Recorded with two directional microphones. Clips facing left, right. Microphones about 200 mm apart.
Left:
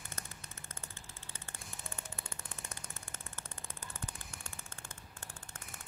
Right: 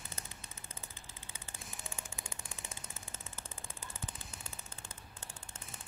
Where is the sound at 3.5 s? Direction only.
Centre (ahead or behind).